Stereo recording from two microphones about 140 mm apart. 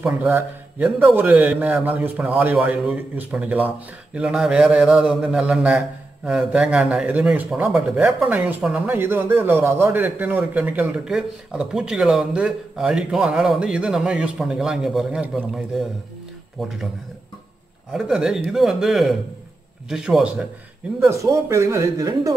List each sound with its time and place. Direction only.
0.0 s a man's voice: 15° right (ahead or behind)
17.9 s speech: 5° right (ahead or behind)
21.0 s a man's voice: 20° right (ahead or behind)